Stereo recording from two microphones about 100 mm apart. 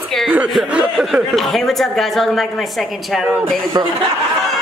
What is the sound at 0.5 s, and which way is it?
Chuckle, 5° right (ahead or behind).